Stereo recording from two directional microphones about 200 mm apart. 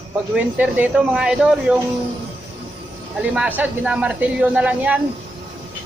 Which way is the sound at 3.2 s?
5° right (ahead or behind).